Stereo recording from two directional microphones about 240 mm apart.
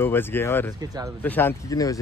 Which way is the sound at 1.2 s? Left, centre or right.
Centre.